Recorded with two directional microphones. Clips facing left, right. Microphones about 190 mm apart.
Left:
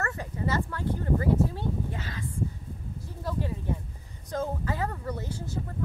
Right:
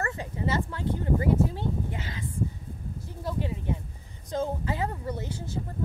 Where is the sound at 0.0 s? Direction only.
25° right (ahead or behind).